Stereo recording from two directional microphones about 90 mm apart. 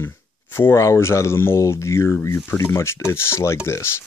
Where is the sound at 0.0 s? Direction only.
25° left (ahead or behind).